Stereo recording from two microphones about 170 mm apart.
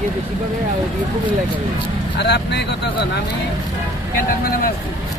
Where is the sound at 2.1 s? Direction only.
80° left.